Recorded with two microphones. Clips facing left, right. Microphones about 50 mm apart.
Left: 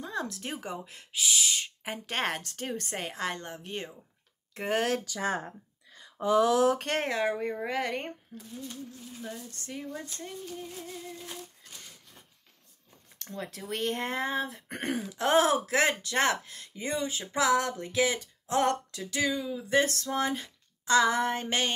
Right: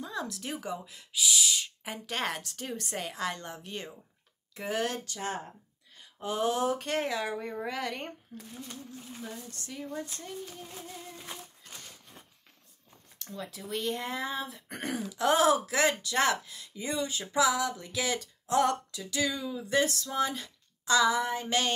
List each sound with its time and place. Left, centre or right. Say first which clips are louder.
0.0 s speech: left 2 dB; left
4.6 s speech: left 3 dB; left
6.1 s speech: left 6 dB; left
7.1 s speech: left 4 dB; left
7.3 s speech: left 3 dB; left
8.3 s a sound: even; centre
9.6 s speech: left 1 dB; left
10.7 s a sound: left 3 dB; right
13.2 s speech: left 2 dB; left
17.3 s speech: left 1 dB; left
18.0 s speech: left 3 dB; left
19.2 s a sound: left 3 dB; centre
19.9 s speech: left 1 dB; left
21.5 s speech: right 1 dB; left